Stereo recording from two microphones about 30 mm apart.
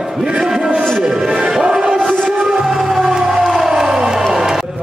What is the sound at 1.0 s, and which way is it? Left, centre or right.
Speech, centre.